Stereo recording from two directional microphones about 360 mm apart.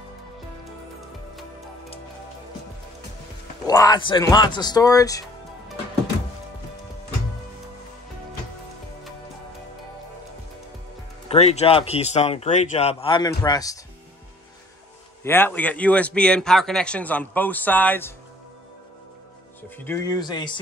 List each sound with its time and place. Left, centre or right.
3.6 s speech: centre
11.2 s speech: centre
15.2 s a man's voice: centre
19.8 s speech: centre